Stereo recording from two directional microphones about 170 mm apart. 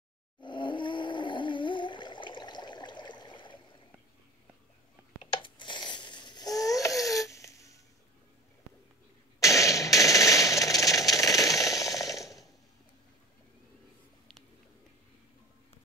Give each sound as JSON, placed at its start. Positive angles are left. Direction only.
{"t": 0.4, "sound": "a sound", "side_deg": 30}
{"t": 5.4, "sound": "babbling", "side_deg": 25}
{"t": 7.0, "sound": "wheeze", "side_deg": 20}
{"t": 9.4, "sound": "machine gun", "side_deg": 20}
{"t": 11.1, "sound": "fireworks", "side_deg": 20}
{"t": 11.6, "sound": "machine gun", "side_deg": 20}